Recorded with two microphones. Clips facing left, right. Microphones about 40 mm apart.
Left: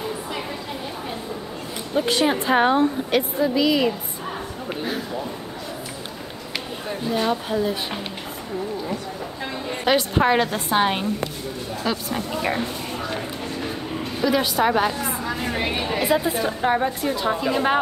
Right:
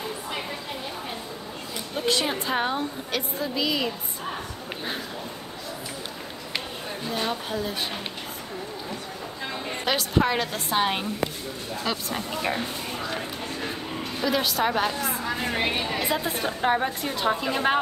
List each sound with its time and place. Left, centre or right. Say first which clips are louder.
2.0 s a woman's voice: left 5 dB; centre
3.4 s a woman's voice: left 6 dB; centre
6.9 s speech: left 6 dB; centre
9.8 s a woman's voice: left 5 dB; centre
15.2 s a sound: left 1 dB; centre
15.8 s speech: left 5 dB; centre